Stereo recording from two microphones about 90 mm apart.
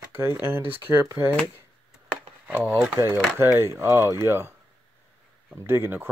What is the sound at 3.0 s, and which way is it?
Speech, 45° right (ahead or behind).